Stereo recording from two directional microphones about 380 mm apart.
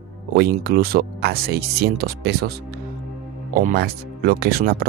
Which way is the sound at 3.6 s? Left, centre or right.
Right.